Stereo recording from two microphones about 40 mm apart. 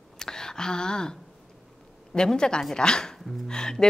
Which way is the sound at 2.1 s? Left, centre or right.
Centre.